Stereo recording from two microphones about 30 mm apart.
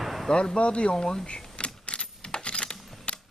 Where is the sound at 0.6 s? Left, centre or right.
Left.